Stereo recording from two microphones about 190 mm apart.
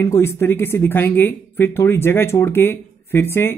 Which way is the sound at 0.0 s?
15° left (ahead or behind).